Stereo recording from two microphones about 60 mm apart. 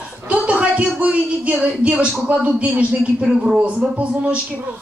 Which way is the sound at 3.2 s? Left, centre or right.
Centre.